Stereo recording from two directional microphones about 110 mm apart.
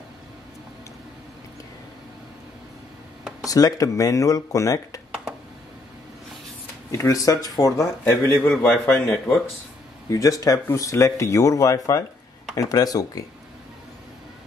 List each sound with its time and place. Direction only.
3.4 s speech: 35° left (ahead or behind)
6.9 s speech: 30° left (ahead or behind)
10.0 s speech: 30° left (ahead or behind)